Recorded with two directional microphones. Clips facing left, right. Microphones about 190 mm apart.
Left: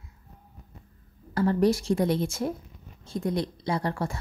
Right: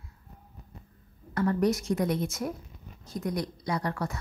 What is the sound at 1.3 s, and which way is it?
A woman's voice, 30° left (ahead or behind).